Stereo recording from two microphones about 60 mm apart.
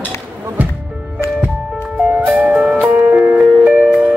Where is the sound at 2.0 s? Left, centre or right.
Centre.